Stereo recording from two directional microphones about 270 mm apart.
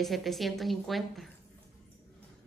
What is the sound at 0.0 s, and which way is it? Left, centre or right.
Speech, centre.